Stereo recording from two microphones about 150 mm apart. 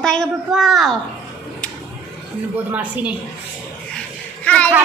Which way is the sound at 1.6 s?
5° left (ahead or behind).